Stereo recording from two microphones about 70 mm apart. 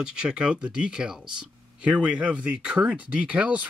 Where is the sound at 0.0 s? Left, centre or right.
Centre.